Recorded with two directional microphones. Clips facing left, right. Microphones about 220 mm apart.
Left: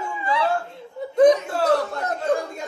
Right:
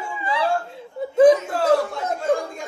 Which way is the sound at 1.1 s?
5° right (ahead or behind).